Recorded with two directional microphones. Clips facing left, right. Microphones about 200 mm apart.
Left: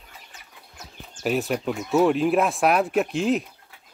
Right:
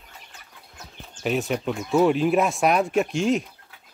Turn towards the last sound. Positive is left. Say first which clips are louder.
# even
turn(degrees=0)  # may be behind; listen again after turning